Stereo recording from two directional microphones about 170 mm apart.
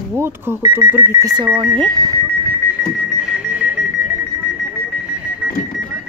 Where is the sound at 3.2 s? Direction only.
5° right (ahead or behind).